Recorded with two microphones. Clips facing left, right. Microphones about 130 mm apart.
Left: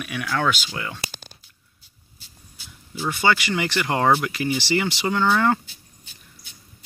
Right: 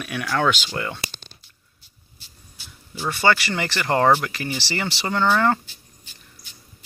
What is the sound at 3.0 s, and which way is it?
Speech, 15° left (ahead or behind).